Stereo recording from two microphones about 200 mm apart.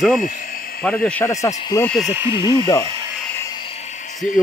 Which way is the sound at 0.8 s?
5° left (ahead or behind).